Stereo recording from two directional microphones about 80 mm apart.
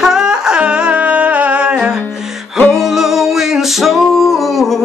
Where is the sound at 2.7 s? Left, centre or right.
Centre.